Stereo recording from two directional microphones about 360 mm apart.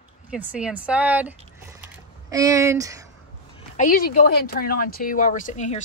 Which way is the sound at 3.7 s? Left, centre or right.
Left.